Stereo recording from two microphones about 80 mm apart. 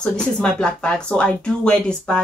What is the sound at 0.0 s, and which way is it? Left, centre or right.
Speech, centre.